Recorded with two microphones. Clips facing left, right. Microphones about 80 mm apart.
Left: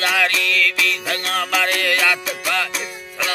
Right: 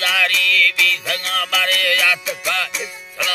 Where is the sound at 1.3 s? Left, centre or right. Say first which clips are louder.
Left 1 dB; left.